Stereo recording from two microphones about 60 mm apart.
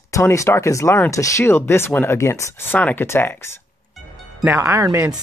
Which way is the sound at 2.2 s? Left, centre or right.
Left.